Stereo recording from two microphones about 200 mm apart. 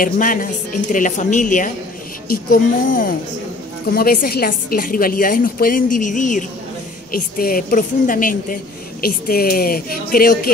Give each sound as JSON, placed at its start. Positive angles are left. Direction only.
{"t": 0.0, "sound": "a woman's voice", "side_deg": 45}